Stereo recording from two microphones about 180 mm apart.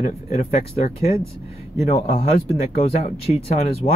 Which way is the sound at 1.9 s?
35° left (ahead or behind).